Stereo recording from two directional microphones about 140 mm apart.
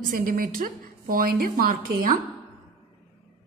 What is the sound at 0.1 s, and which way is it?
A woman's voice, 85° right.